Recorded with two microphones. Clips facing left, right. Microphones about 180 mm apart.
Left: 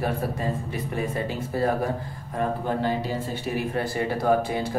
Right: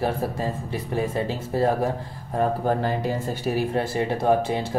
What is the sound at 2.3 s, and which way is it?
Speech, 45° right (ahead or behind).